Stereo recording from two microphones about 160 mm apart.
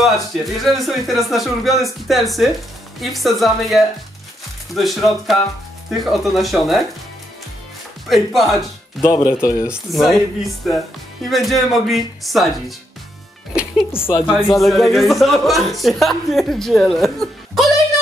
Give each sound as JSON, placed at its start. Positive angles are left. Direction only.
{"t": 0.0, "sound": "a woman's voice", "side_deg": 0}
{"t": 8.1, "sound": "a woman's voice", "side_deg": 0}
{"t": 9.0, "sound": "speech", "side_deg": 20}
{"t": 9.7, "sound": "a woman's voice", "side_deg": 0}
{"t": 13.9, "sound": "a woman's voice", "side_deg": 15}
{"t": 14.6, "sound": "a woman's voice", "side_deg": 0}